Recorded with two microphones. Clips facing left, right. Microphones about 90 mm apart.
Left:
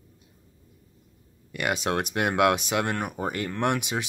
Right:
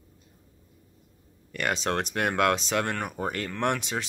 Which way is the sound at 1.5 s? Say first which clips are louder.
Left 1 dB; 10° left (ahead or behind).